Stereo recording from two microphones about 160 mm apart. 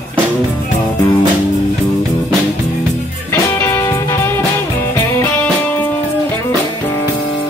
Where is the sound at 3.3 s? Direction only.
15° left (ahead or behind).